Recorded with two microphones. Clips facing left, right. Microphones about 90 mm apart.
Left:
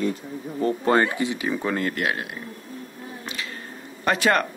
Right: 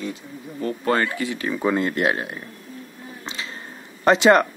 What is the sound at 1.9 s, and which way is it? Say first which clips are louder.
Speech: right 4 dB; 30° right (ahead or behind).